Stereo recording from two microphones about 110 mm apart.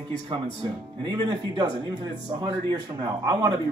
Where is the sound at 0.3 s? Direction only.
45° right (ahead or behind).